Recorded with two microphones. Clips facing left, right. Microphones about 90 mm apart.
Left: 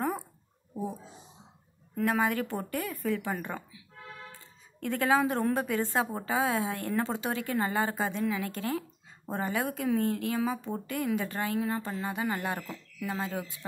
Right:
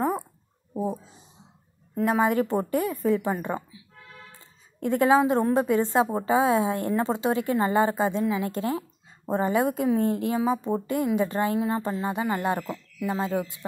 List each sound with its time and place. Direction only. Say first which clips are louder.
2.0 s speech: right 5 dB; 20° right (ahead or behind)
4.7 s speech: right 6 dB; 25° right (ahead or behind)